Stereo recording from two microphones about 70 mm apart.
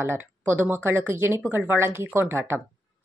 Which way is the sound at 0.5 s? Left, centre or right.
Right.